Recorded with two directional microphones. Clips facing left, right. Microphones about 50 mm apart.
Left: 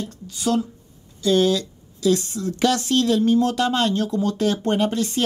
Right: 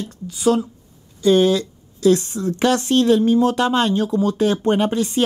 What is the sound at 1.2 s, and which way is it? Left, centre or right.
A woman's voice, right.